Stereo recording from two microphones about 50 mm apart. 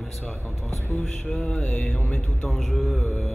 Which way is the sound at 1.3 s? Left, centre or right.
Left.